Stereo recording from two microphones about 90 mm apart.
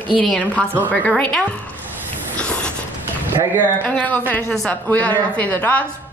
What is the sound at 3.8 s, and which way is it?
A woman's voice, 15° left (ahead or behind).